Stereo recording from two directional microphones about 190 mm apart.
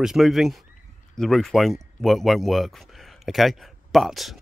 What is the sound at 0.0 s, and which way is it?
Speech, centre (ahead or behind).